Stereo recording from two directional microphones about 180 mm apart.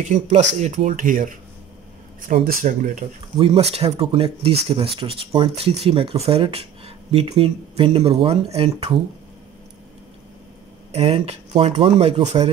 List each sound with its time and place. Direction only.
0.1 s speech: 40° right (ahead or behind)
10.9 s speech: 35° right (ahead or behind)